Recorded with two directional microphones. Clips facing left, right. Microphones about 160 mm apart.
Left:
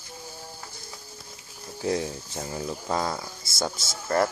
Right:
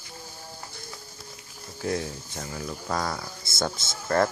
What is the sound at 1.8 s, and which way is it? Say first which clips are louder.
Speech: left 2 dB; 25° left (ahead or behind).